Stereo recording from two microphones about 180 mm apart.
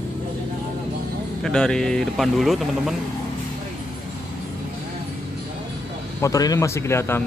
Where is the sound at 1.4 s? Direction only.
5° left (ahead or behind).